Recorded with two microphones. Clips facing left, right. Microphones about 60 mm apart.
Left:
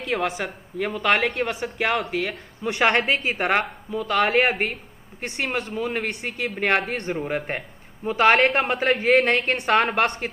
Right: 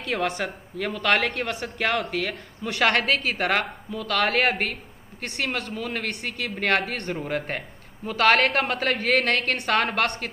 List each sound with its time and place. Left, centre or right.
0.0 s speech: centre
0.7 s speech: centre
4.2 s speech: centre
6.8 s speech: centre
8.5 s speech: centre